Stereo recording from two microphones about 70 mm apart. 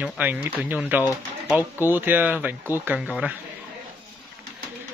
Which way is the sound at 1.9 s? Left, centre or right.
Right.